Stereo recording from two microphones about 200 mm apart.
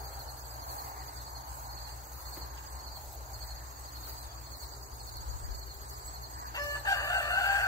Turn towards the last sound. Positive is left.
turn(degrees=15)  # may be behind; listen again after turning